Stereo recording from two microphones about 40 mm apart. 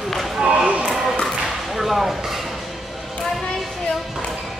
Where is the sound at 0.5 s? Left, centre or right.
Right.